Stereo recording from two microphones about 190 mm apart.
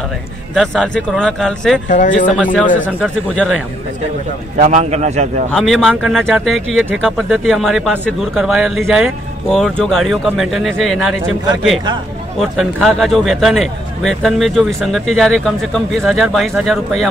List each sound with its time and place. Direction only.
0.6 s speech: 5° left (ahead or behind)
1.9 s speech: 40° left (ahead or behind)
2.3 s speech: 10° left (ahead or behind)
4.6 s a man's voice: 40° right (ahead or behind)
5.5 s speech: centre (ahead or behind)
12.4 s speech: centre (ahead or behind)